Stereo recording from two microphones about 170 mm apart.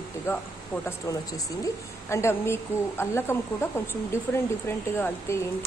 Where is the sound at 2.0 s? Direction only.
15° left (ahead or behind).